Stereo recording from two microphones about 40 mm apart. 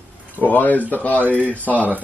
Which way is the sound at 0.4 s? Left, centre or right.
Left.